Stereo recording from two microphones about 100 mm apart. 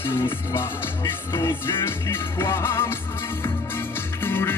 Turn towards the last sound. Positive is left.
turn(degrees=20)  # may be behind; listen again after turning